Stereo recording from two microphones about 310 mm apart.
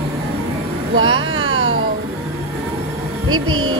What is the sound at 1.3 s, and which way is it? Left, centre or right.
Music, right.